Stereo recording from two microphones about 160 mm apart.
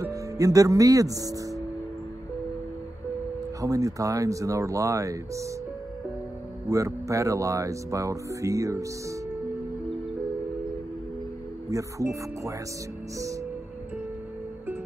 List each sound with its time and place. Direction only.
0.0 s speech: 20° right (ahead or behind)
3.6 s speech: 20° right (ahead or behind)
6.7 s speech: 20° right (ahead or behind)
11.7 s speech: 20° right (ahead or behind)